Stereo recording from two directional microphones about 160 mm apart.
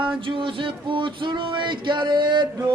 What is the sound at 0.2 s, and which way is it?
Music, 30° right (ahead or behind).